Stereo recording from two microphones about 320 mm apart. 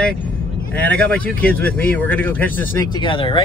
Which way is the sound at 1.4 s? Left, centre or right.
Centre.